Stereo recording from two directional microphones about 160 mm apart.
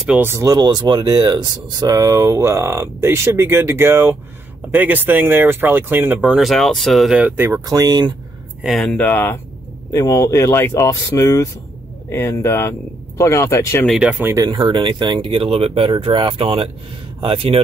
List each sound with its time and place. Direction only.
0.1 s speech: 15° right (ahead or behind)
6.3 s speech: centre (ahead or behind); by 8.1 s 25° right (ahead or behind)
8.6 s speech: centre (ahead or behind); by 13.8 s 15° left (ahead or behind)
13.8 s speech: 5° right (ahead or behind)
14.5 s speech: 30° right (ahead or behind)